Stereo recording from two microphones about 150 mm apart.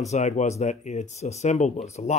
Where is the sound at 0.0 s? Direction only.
50° left (ahead or behind).